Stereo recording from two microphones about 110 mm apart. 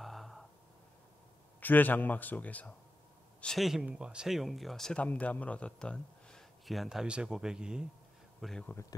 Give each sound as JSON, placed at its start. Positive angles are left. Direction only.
{"t": 0.0, "sound": "a sound", "side_deg": 0}
{"t": 1.6, "sound": "a man's voice", "side_deg": 15}
{"t": 3.3, "sound": "a man's voice", "side_deg": 5}
{"t": 5.0, "sound": "a man's voice", "side_deg": 15}